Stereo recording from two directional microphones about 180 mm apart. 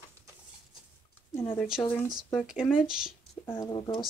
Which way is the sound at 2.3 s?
5° right (ahead or behind).